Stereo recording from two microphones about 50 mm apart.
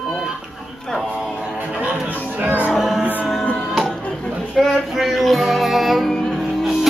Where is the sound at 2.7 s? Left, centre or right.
Centre.